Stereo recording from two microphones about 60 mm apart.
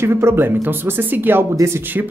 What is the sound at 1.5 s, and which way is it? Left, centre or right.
Speech, right.